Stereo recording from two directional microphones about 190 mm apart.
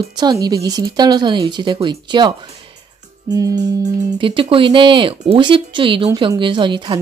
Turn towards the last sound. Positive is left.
turn(degrees=-25)  # may be behind; listen again after turning